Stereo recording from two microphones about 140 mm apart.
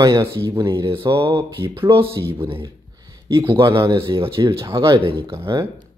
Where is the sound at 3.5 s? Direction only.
25° right (ahead or behind).